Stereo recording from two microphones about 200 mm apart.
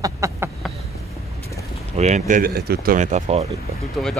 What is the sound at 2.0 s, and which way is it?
Speech, 35° right (ahead or behind).